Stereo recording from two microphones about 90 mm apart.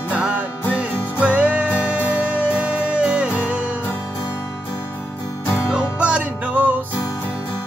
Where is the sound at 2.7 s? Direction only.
10° right (ahead or behind).